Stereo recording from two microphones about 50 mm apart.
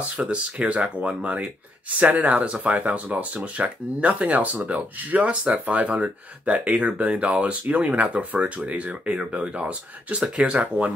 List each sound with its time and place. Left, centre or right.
0.2 s speech: right